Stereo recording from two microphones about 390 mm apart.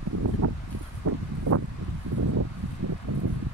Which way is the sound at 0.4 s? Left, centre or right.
Right.